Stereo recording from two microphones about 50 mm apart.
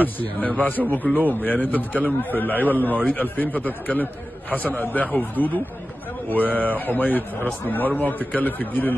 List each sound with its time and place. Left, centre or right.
0.0 s a man's voice: left
6.9 s a man's voice: left